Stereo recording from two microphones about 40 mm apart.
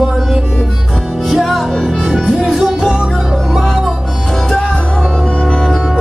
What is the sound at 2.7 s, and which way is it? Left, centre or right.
Music, centre.